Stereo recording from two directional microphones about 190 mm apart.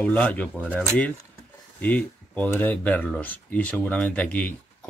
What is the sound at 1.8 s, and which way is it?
Speech, 10° left (ahead or behind).